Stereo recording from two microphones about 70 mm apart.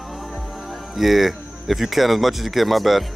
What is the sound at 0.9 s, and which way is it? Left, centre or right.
A man's voice, centre.